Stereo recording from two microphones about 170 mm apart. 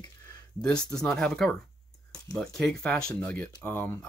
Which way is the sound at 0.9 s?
5° left (ahead or behind).